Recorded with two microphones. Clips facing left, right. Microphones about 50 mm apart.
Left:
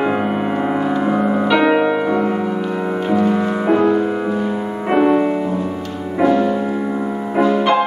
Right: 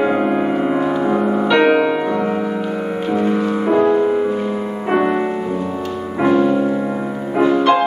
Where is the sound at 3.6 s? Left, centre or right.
Centre.